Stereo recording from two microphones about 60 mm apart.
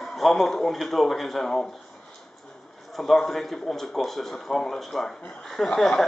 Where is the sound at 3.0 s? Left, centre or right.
Centre.